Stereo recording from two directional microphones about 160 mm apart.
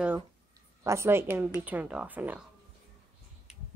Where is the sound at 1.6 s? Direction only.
10° right (ahead or behind).